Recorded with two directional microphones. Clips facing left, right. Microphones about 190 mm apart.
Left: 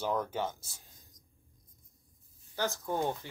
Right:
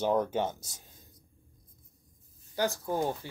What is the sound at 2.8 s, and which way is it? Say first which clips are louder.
Speech: right 2 dB; 10° right (ahead or behind).